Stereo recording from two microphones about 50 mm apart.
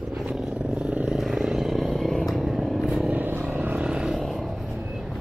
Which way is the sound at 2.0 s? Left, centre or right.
Centre.